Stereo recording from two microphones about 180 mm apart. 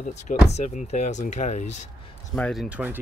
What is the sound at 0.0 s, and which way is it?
Speech, 40° left (ahead or behind).